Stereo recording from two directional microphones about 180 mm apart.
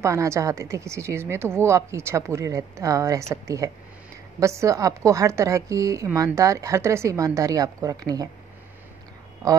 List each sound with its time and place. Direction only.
0.0 s a woman's voice: 15° right (ahead or behind)